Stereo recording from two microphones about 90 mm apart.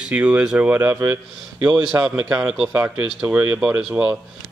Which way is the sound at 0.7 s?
30° right (ahead or behind).